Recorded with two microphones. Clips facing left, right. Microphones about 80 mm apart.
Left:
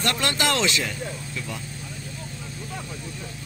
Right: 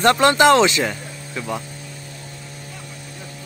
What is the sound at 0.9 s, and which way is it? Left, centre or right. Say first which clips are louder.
Vehicle: right 2 dB; right.